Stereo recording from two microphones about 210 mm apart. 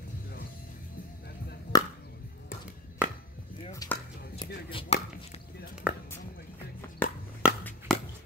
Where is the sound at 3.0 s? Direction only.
5° right (ahead or behind).